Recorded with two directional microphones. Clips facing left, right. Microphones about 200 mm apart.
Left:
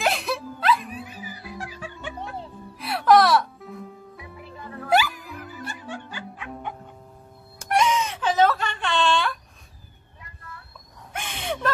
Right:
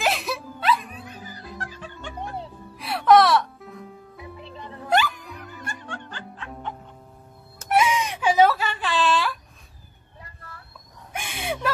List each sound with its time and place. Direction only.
0.0 s music: centre (ahead or behind)
4.4 s music: 25° right (ahead or behind)
4.8 s music: 5° left (ahead or behind)
7.6 s a sound: 5° right (ahead or behind)
11.1 s owl: 10° right (ahead or behind)